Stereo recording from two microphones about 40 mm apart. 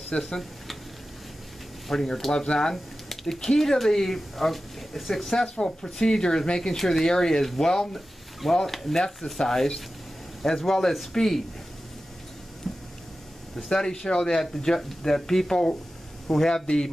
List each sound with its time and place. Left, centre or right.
0.2 s speech: centre
1.9 s speech: centre
2.3 s speech: left
2.7 s speech: centre
5.6 s speech: left; by 9.0 s centre
9.0 s speech: centre
12.7 s a sound: centre
13.7 s speech: centre